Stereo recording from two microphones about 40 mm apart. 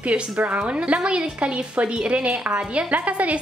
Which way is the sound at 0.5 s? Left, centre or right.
Right.